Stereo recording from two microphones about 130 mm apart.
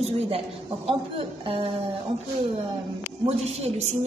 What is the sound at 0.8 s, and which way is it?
Speech, 45° right (ahead or behind).